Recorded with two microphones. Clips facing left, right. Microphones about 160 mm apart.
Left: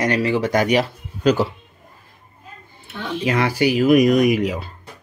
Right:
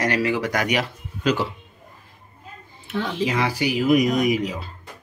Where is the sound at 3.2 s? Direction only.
60° left (ahead or behind).